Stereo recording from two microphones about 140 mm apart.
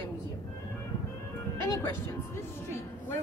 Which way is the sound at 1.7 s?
20° left (ahead or behind).